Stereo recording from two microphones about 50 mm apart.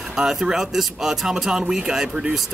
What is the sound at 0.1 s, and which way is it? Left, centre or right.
Speech, centre.